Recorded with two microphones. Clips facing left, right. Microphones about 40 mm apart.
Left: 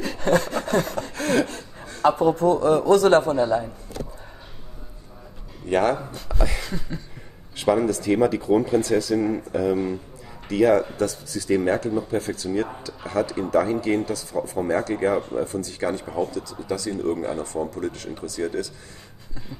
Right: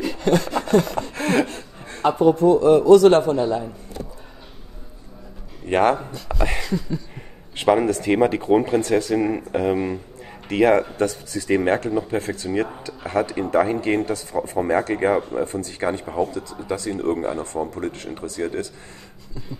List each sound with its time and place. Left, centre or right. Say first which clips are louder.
0.1 s wood: even; left
0.4 s sawing: right 4 dB; right
1.1 s gasp: right 1 dB; right
2.8 s speech: right 8 dB; right
3.1 s speech: right 1 dB; right
5.7 s speech: right 3 dB; right